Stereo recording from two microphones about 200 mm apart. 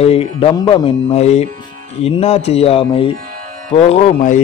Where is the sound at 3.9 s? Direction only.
40° left (ahead or behind).